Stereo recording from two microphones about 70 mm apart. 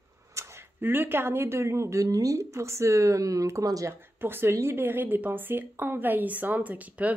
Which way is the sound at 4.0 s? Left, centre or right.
Right.